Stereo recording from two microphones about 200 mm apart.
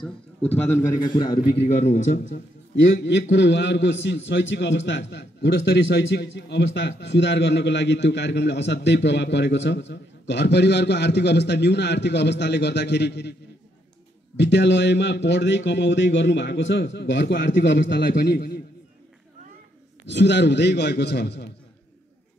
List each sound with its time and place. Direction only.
0.7 s a man's voice: 15° left (ahead or behind)
1.5 s speech: 35° left (ahead or behind)
2.2 s a man's voice: 65° left (ahead or behind)
20.1 s a man's voice: 60° left (ahead or behind)